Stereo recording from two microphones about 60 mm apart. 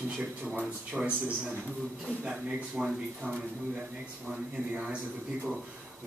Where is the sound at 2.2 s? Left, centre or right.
Centre.